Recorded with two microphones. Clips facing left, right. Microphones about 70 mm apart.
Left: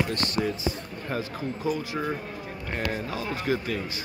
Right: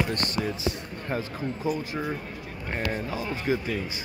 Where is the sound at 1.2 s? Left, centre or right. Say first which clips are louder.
Even; right.